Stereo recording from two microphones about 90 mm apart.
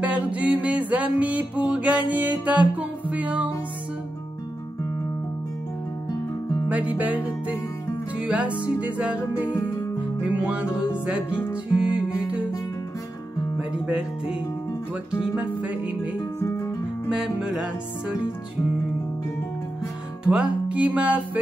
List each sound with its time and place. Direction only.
0.0 s music: 15° right (ahead or behind)
6.7 s music: 15° right (ahead or behind)
13.6 s speech: 15° right (ahead or behind)
15.0 s music: 15° right (ahead or behind)
16.3 s music: 30° left (ahead or behind)
17.1 s music: 10° right (ahead or behind)
20.2 s music: 10° right (ahead or behind)